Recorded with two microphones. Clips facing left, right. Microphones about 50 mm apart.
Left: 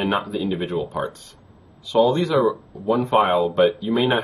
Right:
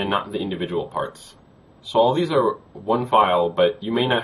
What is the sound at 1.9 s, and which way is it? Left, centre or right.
Speech, centre.